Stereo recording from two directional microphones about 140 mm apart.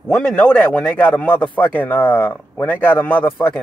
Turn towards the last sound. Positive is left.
turn(degrees=15)  # may be behind; listen again after turning